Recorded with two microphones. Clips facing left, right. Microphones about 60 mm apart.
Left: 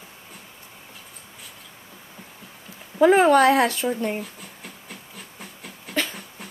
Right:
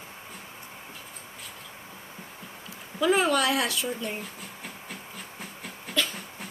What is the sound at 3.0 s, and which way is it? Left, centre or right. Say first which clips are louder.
Speech: left 8 dB; left.